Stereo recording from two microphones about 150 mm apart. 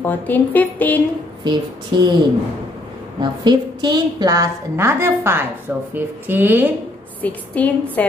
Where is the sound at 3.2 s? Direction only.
30° right (ahead or behind); by 6.7 s 10° right (ahead or behind).